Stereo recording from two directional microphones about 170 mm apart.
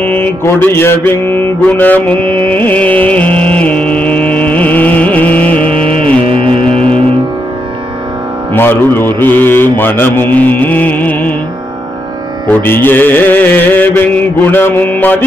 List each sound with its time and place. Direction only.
0.0 s a man's voice: 10° left (ahead or behind)
2.1 s carnatic music: 30° right (ahead or behind)
2.5 s music: 10° left (ahead or behind)
5.7 s music: 35° right (ahead or behind)
8.5 s a man's voice: 15° left (ahead or behind)
12.4 s a man's voice: 10° left (ahead or behind)